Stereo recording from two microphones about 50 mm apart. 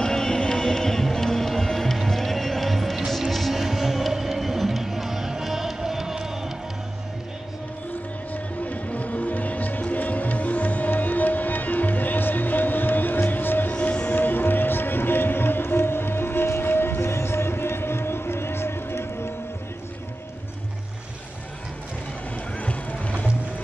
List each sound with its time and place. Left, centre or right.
0.0 s music: centre
8.3 s music: left
13.7 s music: left
14.1 s music: left
22.6 s boat: left